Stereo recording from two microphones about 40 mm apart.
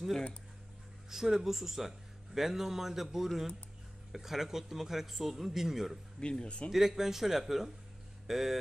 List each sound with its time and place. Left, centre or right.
1.1 s a man's voice: centre
6.4 s a man's voice: left
6.7 s a man's voice: centre